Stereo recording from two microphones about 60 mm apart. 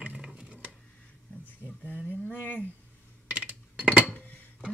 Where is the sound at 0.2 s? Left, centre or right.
Centre.